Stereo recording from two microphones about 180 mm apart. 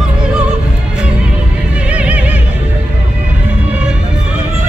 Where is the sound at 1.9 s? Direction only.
5° right (ahead or behind).